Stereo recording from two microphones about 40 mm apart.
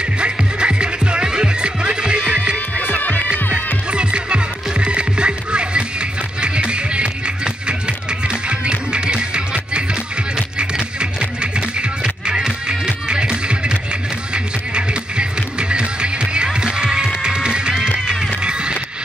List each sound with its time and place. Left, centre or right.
0.2 s music: right
2.8 s music: left
3.5 s music: right